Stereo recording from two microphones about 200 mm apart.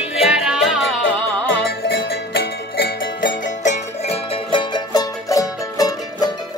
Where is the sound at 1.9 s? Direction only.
50° left (ahead or behind).